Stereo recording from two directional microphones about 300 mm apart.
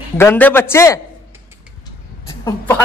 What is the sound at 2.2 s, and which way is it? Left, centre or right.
Speech, centre.